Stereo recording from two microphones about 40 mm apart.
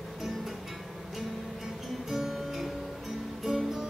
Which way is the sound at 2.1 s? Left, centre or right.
Centre.